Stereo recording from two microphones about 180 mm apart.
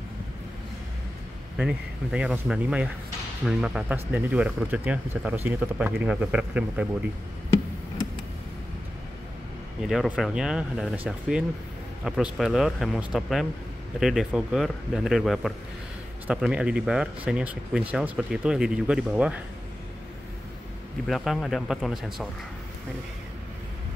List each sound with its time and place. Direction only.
1.6 s a man's voice: 5° right (ahead or behind)
9.8 s a man's voice: centre (ahead or behind)
21.1 s a man's voice: centre (ahead or behind)